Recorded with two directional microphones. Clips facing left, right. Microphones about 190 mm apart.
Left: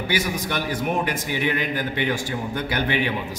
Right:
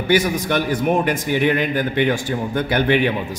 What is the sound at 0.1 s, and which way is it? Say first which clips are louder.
A man's voice: right 9 dB; 50° right (ahead or behind).